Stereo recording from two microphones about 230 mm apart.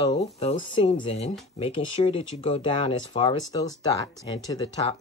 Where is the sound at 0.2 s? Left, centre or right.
Left.